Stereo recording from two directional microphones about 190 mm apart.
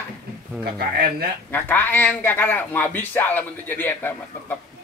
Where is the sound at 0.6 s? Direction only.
55° right (ahead or behind).